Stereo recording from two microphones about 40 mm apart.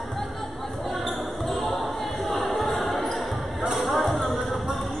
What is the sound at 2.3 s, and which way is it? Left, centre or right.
Music, centre.